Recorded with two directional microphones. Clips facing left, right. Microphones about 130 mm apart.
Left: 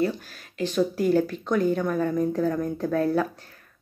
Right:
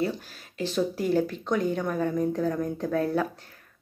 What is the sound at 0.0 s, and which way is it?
Speech, 25° right (ahead or behind).